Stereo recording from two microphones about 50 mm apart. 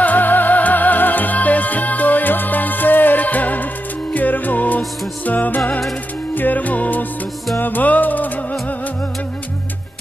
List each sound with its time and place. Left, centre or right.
0.0 s music: left